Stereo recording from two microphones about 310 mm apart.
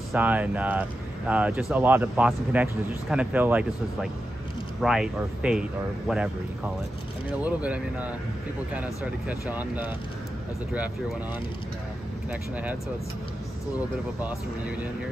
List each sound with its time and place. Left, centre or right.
0.1 s speech: centre
7.4 s speech: centre
9.5 s speech: centre
12.3 s speech: centre